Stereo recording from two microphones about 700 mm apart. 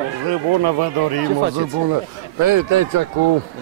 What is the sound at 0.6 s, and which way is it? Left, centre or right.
Speech, right.